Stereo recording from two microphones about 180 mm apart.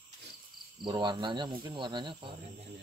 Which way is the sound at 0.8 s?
25° right (ahead or behind).